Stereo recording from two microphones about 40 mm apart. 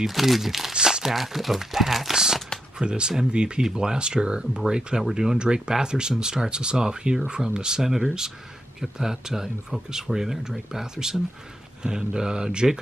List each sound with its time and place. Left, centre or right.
0.0 s speech: centre
0.7 s crumpling: right
1.0 s speech: centre